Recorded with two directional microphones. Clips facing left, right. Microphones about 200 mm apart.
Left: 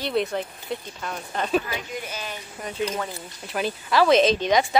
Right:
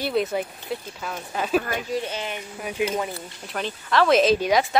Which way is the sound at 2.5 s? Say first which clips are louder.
Right 2 dB; 5° right (ahead or behind).